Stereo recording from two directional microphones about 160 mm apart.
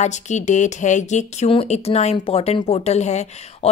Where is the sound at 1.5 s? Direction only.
35° left (ahead or behind).